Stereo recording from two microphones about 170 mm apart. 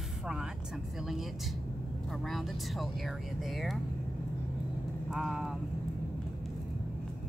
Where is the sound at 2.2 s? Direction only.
Centre (ahead or behind).